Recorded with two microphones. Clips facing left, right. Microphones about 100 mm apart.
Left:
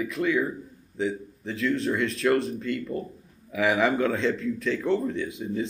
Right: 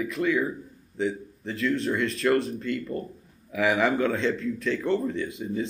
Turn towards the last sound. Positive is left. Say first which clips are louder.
# even
turn(degrees=0)  # may be behind; listen again after turning